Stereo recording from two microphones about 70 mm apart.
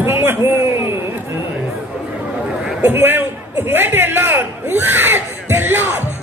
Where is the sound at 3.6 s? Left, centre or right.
Right.